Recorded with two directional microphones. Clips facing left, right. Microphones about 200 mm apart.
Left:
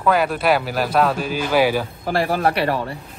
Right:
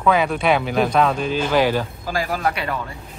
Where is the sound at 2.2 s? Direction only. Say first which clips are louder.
Left 5 dB; 30° left (ahead or behind).